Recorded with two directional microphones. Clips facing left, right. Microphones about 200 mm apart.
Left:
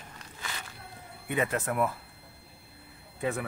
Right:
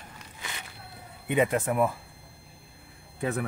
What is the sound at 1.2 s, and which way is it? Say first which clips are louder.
Speech: right 5 dB; 15° right (ahead or behind).